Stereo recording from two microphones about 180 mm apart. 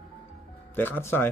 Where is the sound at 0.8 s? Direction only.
10° left (ahead or behind).